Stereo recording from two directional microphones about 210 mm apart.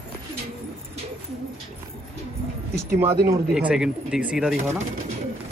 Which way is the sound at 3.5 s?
5° right (ahead or behind).